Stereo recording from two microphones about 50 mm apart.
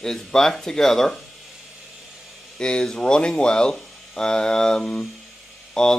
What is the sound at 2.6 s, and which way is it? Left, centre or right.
Speech, centre.